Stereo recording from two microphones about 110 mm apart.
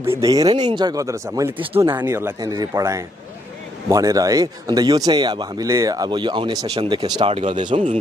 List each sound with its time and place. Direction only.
0.0 s speech: 25° right (ahead or behind); by 7.2 s 45° right (ahead or behind)
7.2 s speech: 60° right (ahead or behind)